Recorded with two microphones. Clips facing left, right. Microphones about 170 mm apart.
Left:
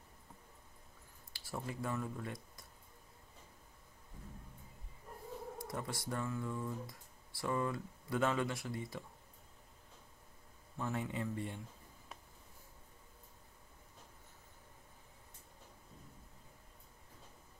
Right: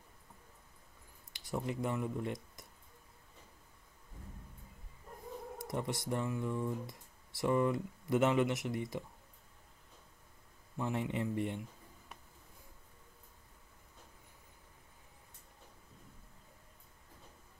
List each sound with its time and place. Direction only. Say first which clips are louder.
1.3 s speech: right 6 dB; 20° right (ahead or behind)
5.6 s speech: right 7 dB; 20° right (ahead or behind)
10.8 s speech: right 3 dB; 20° right (ahead or behind)